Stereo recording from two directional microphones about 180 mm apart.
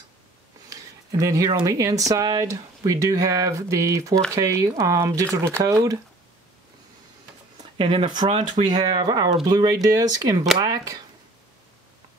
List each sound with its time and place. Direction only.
0.7 s a sound: 20° right (ahead or behind)
1.1 s speech: 20° right (ahead or behind)
7.7 s speech: 30° right (ahead or behind)